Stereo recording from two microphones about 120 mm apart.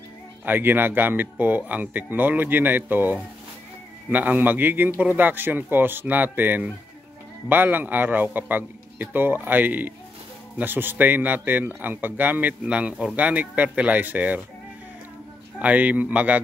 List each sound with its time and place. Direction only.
0.5 s a man's voice: 15° right (ahead or behind)
15.6 s a man's voice: 10° right (ahead or behind)